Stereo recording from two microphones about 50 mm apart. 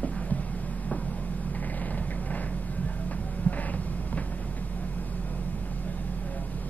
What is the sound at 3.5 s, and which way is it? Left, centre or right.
Hum, left.